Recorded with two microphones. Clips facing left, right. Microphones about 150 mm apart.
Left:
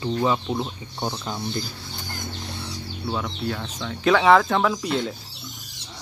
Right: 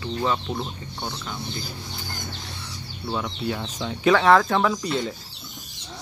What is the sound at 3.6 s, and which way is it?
Speech, 15° right (ahead or behind).